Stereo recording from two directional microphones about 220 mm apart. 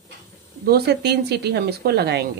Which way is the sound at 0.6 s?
45° right (ahead or behind).